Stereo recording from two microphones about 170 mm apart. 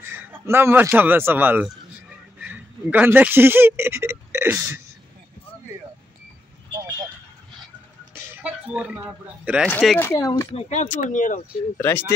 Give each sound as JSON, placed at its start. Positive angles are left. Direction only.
{"t": 0.3, "sound": "a man's voice", "side_deg": -15}
{"t": 8.1, "sound": "speech", "side_deg": -10}
{"t": 9.7, "sound": "speech", "side_deg": 10}
{"t": 10.5, "sound": "speech", "side_deg": 40}